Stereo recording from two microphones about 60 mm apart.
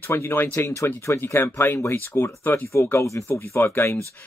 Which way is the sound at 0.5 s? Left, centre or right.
Left.